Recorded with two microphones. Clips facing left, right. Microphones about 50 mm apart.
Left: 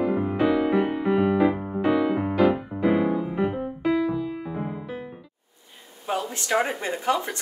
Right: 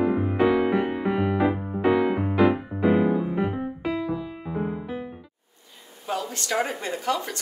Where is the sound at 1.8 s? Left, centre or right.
Centre.